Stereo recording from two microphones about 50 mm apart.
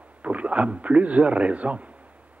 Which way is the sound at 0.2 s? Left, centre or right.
Right.